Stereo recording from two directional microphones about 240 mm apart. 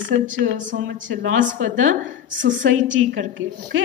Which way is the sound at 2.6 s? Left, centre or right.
Right.